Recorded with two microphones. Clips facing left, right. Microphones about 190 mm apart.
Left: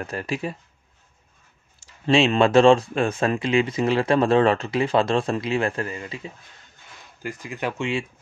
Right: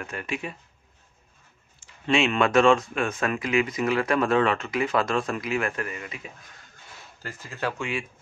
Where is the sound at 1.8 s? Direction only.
30° left (ahead or behind).